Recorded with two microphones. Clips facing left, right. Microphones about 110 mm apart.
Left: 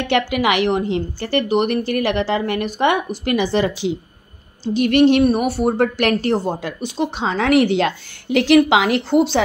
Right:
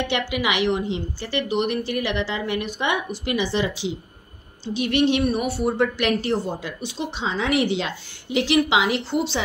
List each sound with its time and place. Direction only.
0.0 s a woman's voice: 50° left (ahead or behind)